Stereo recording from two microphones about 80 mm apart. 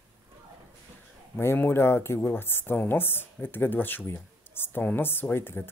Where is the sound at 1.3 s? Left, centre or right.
Left.